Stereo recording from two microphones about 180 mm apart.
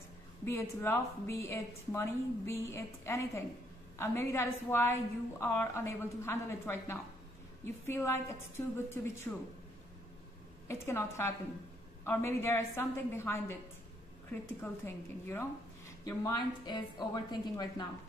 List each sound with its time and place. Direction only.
0.5 s a woman's voice: 15° left (ahead or behind)
10.7 s a woman's voice: 15° left (ahead or behind)
14.6 s a woman's voice: 10° left (ahead or behind)